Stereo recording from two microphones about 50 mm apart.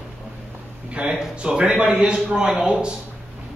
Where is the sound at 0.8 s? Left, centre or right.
Right.